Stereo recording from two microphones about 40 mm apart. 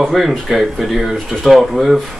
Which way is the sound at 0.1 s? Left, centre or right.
Centre.